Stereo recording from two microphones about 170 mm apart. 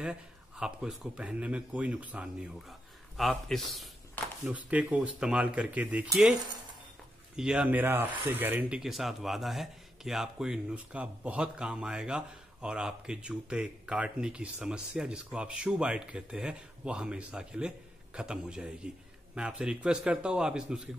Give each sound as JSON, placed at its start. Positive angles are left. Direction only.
{"t": 0.0, "sound": "speech", "side_deg": -5}
{"t": 7.3, "sound": "speech", "side_deg": -5}